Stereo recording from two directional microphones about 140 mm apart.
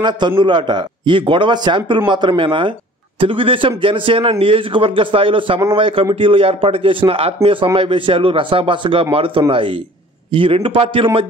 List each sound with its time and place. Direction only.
0.4 s a man's voice: 35° right (ahead or behind)